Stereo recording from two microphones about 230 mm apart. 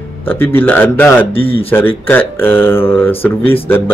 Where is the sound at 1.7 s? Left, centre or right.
Centre.